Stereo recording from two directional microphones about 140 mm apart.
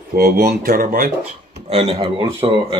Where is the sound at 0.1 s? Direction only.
90° right.